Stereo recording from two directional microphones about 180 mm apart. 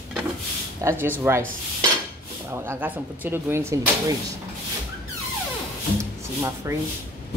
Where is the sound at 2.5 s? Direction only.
15° right (ahead or behind).